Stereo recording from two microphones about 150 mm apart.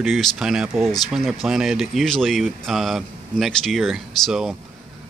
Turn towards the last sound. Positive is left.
turn(degrees=-5)  # may be behind; listen again after turning